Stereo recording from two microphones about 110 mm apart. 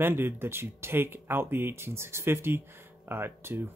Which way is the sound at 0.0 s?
20° right (ahead or behind).